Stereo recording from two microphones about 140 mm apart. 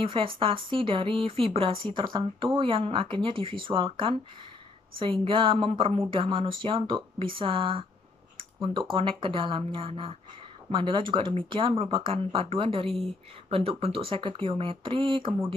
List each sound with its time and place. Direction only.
0.0 s speech: 40° right (ahead or behind)